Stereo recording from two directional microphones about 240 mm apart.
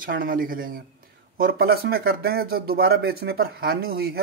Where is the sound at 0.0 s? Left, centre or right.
Right.